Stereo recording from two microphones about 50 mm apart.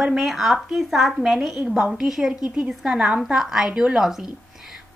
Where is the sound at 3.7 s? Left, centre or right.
Right.